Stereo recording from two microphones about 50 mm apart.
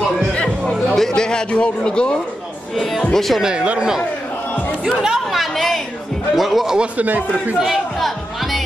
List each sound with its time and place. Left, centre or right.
0.7 s speech: centre
2.7 s speech: centre
3.4 s speech: right
5.3 s a woman's voice: centre
6.8 s speech: right
7.5 s speech: centre